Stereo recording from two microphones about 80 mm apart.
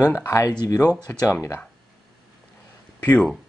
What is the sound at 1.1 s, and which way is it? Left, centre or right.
Speech, left.